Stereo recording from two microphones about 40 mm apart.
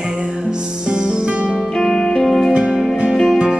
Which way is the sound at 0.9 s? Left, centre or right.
Right.